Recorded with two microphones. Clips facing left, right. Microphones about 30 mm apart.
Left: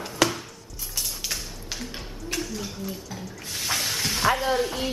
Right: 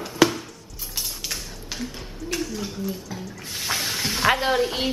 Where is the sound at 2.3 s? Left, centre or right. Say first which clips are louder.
Right 3 dB; centre.